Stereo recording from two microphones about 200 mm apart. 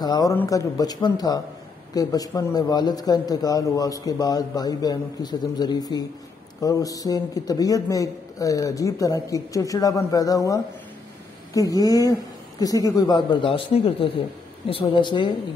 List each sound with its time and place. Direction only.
0.0 s a man's voice: 20° left (ahead or behind)